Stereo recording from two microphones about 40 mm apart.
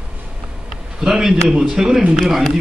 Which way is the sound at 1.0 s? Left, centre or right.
Centre.